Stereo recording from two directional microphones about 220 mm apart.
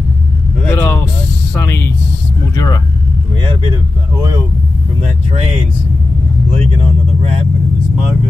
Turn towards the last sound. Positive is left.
turn(degrees=-25)  # may be behind; listen again after turning